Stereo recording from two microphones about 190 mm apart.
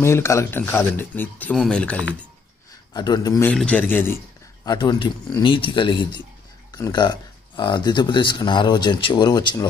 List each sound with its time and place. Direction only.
0.0 s speech: 15° left (ahead or behind)
2.9 s speech: 20° left (ahead or behind)
3.4 s speech: 5° left (ahead or behind)
4.6 s speech: 25° left (ahead or behind)